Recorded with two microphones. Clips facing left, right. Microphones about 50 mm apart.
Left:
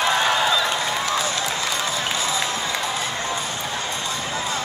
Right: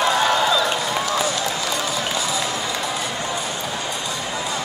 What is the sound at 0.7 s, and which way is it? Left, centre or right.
Run, left.